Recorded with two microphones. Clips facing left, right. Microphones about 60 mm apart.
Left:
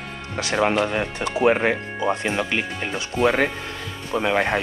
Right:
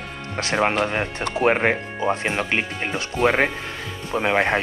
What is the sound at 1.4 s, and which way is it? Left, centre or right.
Speech, right.